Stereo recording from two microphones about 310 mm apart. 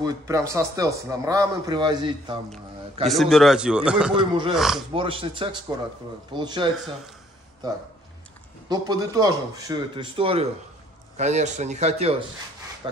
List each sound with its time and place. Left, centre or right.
0.0 s speech: centre
3.1 s speech: centre
4.9 s speech: centre
8.6 s speech: centre